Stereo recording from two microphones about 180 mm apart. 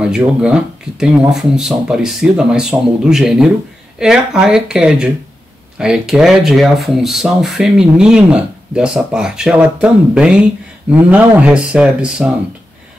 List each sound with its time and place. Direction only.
0.0 s speech: 5° right (ahead or behind)